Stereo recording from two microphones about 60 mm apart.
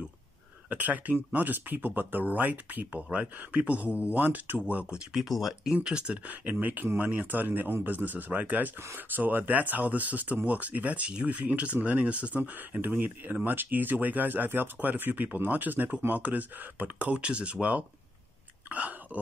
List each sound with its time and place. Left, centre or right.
0.7 s speech: right
4.6 s speech: centre
5.2 s speech: centre
6.5 s speech: right
18.7 s hiccup: right